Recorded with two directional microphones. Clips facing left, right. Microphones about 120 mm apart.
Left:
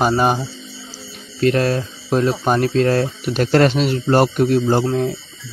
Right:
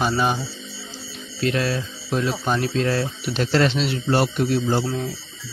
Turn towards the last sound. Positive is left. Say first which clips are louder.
# left 6 dB
turn(degrees=50)  # may be behind; listen again after turning